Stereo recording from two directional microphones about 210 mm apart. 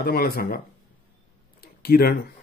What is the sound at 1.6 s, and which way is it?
Speech, 45° left (ahead or behind).